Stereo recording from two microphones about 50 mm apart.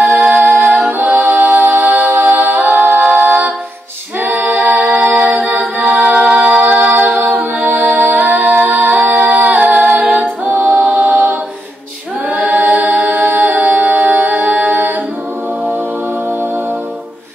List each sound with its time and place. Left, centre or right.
0.0 s music: right
4.8 s music: right
10.8 s a capella: right
12.3 s music: right